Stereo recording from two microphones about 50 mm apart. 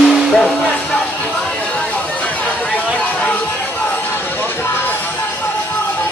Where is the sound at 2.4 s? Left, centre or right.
Left.